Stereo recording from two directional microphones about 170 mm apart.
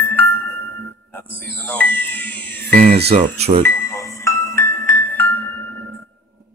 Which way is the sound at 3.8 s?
15° left (ahead or behind).